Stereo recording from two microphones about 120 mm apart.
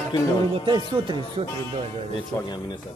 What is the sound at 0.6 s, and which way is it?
Music, 40° right (ahead or behind).